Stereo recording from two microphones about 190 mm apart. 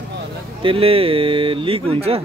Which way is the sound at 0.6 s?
30° right (ahead or behind).